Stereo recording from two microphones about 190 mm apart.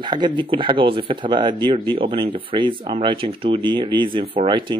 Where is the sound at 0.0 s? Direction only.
25° right (ahead or behind).